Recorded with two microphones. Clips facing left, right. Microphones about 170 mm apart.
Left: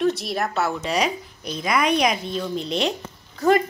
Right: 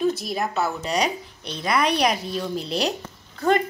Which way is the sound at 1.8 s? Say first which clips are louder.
Left 1 dB; 35° right (ahead or behind).